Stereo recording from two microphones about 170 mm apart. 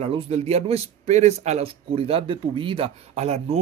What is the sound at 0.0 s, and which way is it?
Speech, 40° right (ahead or behind).